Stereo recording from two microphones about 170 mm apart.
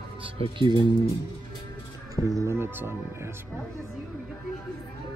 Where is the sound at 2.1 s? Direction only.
20° right (ahead or behind).